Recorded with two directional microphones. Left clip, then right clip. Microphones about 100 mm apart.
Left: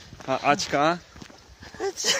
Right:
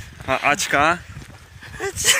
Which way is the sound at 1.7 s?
40° left (ahead or behind).